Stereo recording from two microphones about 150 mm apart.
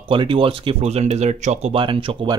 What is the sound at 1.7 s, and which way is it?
Speech, 35° right (ahead or behind).